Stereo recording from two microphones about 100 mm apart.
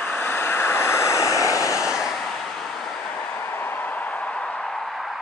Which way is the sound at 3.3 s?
20° left (ahead or behind).